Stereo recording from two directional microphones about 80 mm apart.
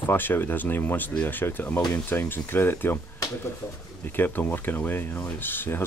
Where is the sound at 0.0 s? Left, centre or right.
Left.